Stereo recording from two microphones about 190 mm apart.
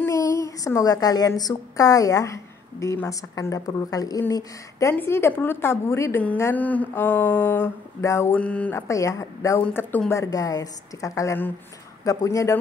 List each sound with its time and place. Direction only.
0.0 s a woman's voice: 15° left (ahead or behind)